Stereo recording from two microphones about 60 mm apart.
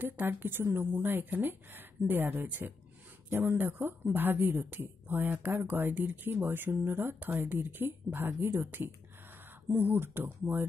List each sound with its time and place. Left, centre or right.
0.0 s speech: right